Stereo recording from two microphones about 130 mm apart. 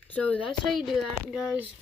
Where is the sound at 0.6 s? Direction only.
Centre (ahead or behind).